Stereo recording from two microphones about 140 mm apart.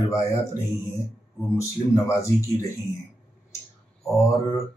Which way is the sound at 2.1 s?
20° left (ahead or behind).